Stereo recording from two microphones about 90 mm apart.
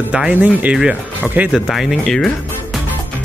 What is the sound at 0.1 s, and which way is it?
Speech, 15° right (ahead or behind).